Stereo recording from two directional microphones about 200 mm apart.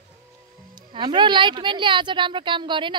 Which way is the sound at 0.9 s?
25° right (ahead or behind).